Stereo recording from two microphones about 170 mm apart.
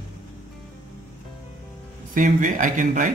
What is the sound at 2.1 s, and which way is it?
Speech, 50° right (ahead or behind).